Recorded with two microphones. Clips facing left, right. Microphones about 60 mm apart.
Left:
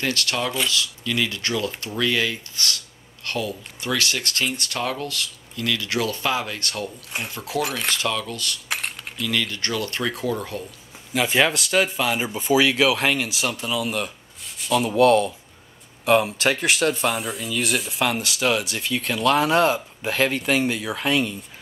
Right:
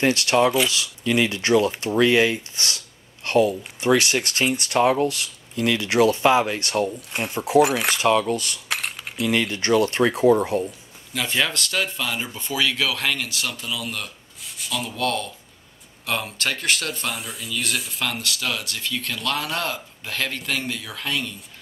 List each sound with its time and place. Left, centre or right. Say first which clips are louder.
0.0 s speech: right 7 dB; right
8.6 s coin: right 1 dB; centre
9.2 s speech: right 4 dB; right
11.1 s speech: left 4 dB; centre
14.4 s rub: left 8 dB; centre
15.0 s speech: left 10 dB; centre